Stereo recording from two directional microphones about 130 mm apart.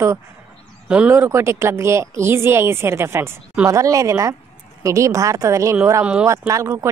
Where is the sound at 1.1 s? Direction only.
20° right (ahead or behind).